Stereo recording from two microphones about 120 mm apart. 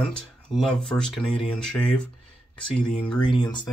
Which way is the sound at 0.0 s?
Centre (ahead or behind).